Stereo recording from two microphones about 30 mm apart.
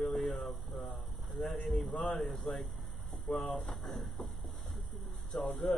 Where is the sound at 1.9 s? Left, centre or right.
Left.